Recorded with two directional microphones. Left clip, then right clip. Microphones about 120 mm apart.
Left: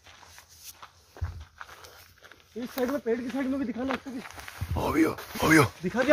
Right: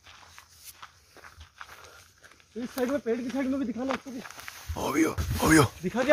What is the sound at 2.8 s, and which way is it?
Speech, 55° right (ahead or behind).